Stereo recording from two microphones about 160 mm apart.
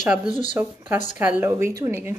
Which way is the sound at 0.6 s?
15° right (ahead or behind).